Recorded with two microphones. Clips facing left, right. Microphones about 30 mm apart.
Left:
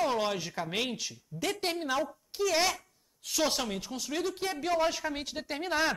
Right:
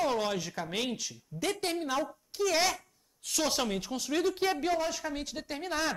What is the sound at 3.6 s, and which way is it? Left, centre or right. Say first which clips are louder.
A woman's voice: right 3 dB; centre.